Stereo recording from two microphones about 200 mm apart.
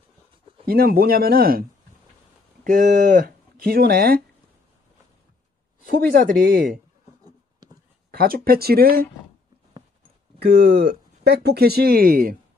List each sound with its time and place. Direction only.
0.7 s speech: 50° right (ahead or behind)
5.9 s speech: 50° right (ahead or behind)
7.6 s a sound: 20° right (ahead or behind)
8.1 s speech: 50° right (ahead or behind)
10.4 s speech: 55° right (ahead or behind)